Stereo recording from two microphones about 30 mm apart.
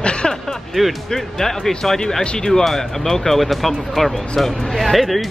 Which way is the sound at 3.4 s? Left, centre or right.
Centre.